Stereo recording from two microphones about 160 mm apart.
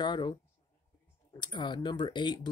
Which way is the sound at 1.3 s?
30° left (ahead or behind).